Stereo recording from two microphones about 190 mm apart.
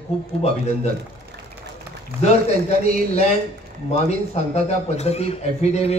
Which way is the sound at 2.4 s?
35° left (ahead or behind).